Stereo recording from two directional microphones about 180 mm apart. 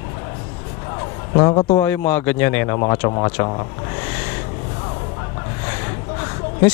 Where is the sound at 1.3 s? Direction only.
30° left (ahead or behind).